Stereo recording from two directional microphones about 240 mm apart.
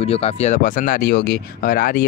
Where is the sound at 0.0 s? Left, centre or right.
Left.